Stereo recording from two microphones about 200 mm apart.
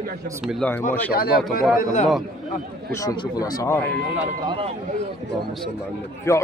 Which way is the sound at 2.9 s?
20° left (ahead or behind).